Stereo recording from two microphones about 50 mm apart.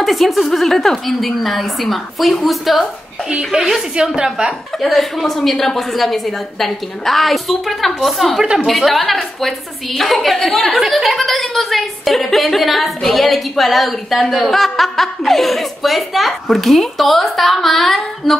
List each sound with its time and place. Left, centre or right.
0.0 s a woman's voice: centre
3.3 s a woman's voice: centre
4.8 s a woman's voice: centre